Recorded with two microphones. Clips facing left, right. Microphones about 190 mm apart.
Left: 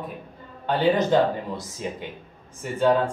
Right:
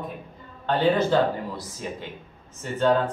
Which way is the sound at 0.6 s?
15° left (ahead or behind).